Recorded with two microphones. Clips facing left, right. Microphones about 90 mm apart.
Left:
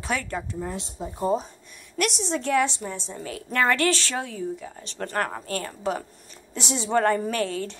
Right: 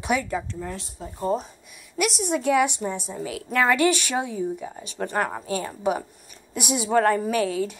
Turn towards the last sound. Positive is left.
turn(degrees=-10)  # may be behind; listen again after turning